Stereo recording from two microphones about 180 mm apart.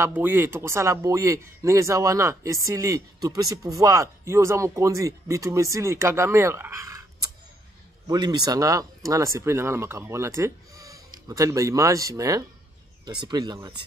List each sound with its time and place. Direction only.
0.0 s speech: 10° right (ahead or behind)